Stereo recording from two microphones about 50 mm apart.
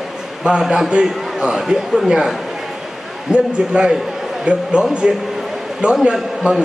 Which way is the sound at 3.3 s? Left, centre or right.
Centre.